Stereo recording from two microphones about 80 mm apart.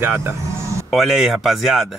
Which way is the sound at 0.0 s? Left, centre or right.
Right.